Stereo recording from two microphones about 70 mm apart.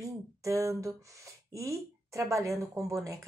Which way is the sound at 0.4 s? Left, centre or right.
Right.